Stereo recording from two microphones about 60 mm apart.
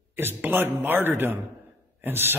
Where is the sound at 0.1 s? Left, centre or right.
Right.